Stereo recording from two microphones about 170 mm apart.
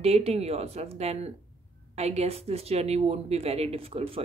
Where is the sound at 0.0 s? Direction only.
35° right (ahead or behind).